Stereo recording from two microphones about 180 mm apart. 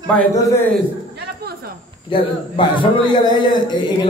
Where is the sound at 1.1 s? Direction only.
60° right (ahead or behind).